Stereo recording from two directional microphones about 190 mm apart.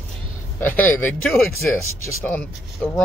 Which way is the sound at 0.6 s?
10° left (ahead or behind).